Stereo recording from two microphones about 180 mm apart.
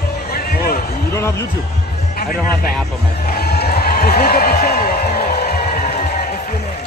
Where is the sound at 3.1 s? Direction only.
60° left (ahead or behind).